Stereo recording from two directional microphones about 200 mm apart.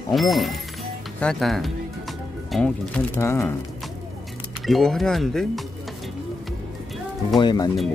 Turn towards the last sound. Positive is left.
turn(degrees=20)  # may be behind; listen again after turning